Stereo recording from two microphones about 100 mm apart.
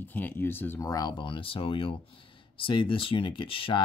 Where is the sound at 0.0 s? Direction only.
20° left (ahead or behind).